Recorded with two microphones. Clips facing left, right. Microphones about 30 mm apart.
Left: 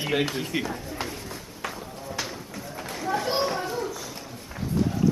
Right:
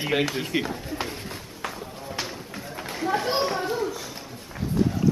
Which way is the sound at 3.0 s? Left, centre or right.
Right.